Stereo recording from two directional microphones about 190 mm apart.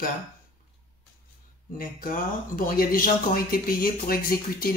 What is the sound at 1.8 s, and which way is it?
Speech, 45° left (ahead or behind).